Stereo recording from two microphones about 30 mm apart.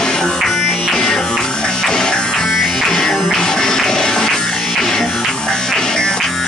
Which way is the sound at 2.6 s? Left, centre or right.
Centre.